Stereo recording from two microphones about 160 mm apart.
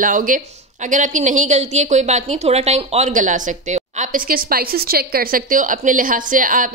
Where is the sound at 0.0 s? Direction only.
55° right (ahead or behind); by 3.1 s 40° right (ahead or behind).